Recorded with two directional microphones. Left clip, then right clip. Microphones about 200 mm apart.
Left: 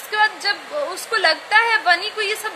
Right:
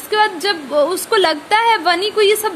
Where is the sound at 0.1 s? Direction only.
45° right (ahead or behind).